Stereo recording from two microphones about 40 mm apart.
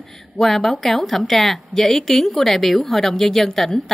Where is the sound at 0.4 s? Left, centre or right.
Centre.